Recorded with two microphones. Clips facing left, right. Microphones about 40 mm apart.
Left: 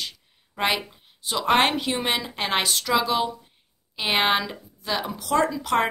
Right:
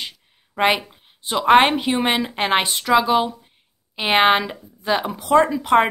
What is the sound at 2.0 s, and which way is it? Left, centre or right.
Speech, right.